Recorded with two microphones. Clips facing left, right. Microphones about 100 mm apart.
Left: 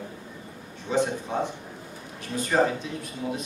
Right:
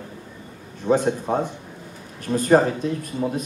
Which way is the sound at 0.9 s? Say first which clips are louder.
Right 6 dB; 50° right (ahead or behind).